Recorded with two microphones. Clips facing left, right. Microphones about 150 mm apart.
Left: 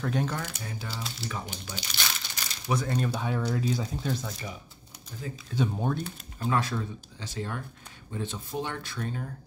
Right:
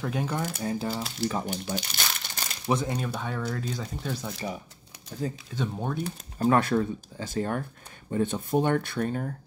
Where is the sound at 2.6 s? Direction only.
25° right (ahead or behind).